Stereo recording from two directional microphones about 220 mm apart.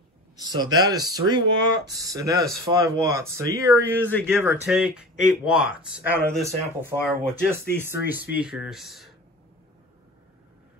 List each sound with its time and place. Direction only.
0.4 s speech: 20° right (ahead or behind); by 9.1 s centre (ahead or behind)